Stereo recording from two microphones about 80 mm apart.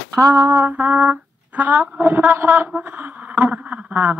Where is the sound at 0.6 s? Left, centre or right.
Right.